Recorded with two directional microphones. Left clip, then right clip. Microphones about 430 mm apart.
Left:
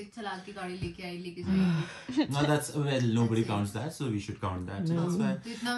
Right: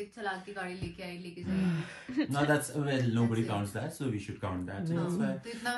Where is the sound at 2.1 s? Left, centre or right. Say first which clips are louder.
Left 1 dB; centre.